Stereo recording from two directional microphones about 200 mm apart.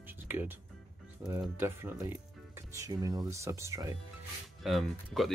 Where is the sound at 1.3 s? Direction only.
10° right (ahead or behind).